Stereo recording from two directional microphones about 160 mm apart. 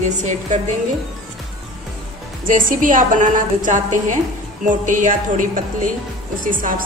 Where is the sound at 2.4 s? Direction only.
60° right (ahead or behind).